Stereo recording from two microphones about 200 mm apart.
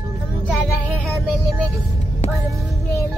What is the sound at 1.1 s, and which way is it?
Music, centre (ahead or behind).